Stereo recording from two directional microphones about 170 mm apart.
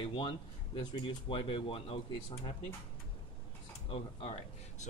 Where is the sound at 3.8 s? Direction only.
35° left (ahead or behind).